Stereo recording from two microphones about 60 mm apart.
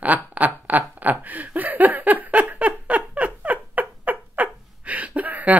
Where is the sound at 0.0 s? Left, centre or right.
Right.